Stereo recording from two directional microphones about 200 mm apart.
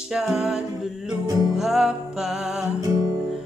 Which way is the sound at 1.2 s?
20° right (ahead or behind).